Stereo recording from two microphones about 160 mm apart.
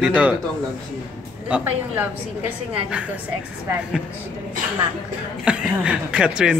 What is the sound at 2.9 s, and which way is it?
Speech, 5° right (ahead or behind).